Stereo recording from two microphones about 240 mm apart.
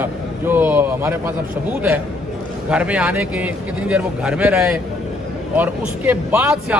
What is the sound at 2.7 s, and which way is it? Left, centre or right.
A man's voice, centre.